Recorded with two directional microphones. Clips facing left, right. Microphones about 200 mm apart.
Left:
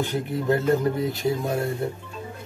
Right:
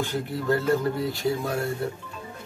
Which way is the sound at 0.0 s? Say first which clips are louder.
Left 2 dB; 20° left (ahead or behind).